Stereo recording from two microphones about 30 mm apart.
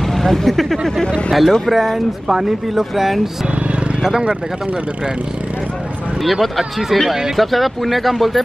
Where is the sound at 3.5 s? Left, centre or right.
Right.